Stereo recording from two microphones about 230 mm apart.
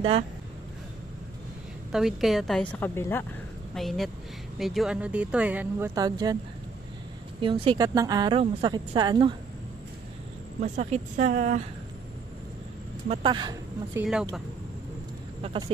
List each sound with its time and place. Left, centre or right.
1.9 s speech: centre
7.3 s a woman's voice: right
10.6 s speech: right
13.1 s a woman's voice: right
15.4 s a woman's voice: right